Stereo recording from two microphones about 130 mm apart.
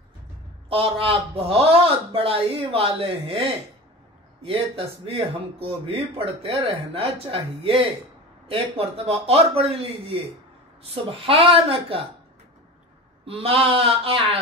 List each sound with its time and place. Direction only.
0.7 s speech: 45° right (ahead or behind)
13.2 s speech: 45° right (ahead or behind)